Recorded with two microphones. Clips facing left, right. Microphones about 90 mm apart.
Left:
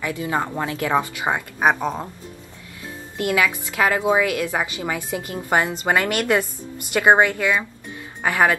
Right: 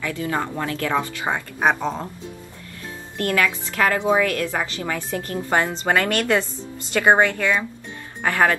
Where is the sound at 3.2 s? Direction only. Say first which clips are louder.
Left 1 dB; 15° left (ahead or behind).